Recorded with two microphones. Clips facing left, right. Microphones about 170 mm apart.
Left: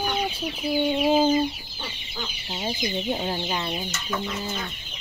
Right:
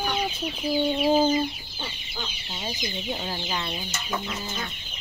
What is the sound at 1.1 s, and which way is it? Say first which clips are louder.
Chicken: left 1 dB; 10° left (ahead or behind).